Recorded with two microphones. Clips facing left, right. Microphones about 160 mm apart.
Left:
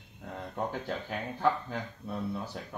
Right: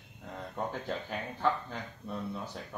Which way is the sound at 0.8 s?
Centre (ahead or behind).